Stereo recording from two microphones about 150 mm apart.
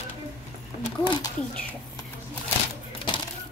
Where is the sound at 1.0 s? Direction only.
30° left (ahead or behind).